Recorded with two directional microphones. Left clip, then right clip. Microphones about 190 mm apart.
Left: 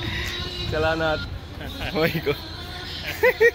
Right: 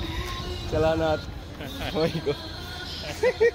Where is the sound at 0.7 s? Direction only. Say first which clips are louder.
Even; 15° right (ahead or behind).